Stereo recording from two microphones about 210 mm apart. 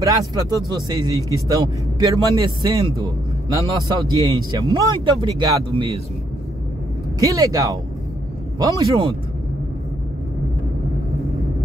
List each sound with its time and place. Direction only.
0.0 s speech: 15° right (ahead or behind)
7.2 s speech: 15° right (ahead or behind)